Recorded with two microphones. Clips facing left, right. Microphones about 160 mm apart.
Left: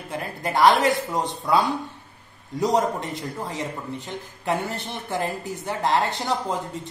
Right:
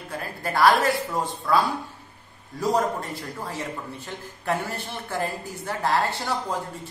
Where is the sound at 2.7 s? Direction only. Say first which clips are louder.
Even; 20° left (ahead or behind).